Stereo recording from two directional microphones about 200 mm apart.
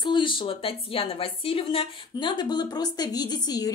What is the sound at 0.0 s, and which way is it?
A woman's voice, 25° left (ahead or behind).